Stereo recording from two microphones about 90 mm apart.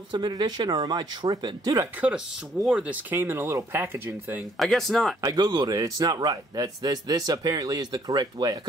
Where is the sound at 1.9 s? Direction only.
15° right (ahead or behind).